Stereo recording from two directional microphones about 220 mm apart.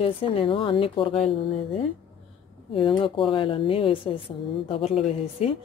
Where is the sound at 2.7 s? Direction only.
25° left (ahead or behind).